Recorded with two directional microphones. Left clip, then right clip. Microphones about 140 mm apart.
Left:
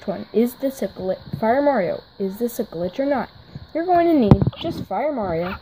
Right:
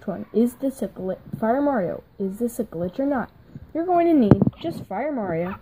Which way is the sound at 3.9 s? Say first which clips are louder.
Left 2 dB; 5° right (ahead or behind).